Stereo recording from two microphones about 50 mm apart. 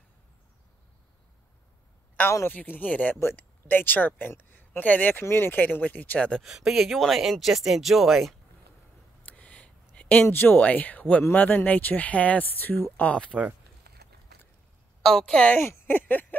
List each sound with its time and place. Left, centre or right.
2.5 s speech: left
5.2 s speech: left
6.4 s speech: centre
9.2 s a sound: left
10.2 s speech: left
10.6 s speech: left
15.0 s a woman's voice: centre
15.9 s a sound: left